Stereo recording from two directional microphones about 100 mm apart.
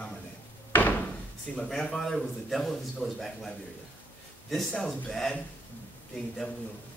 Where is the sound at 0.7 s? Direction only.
15° left (ahead or behind).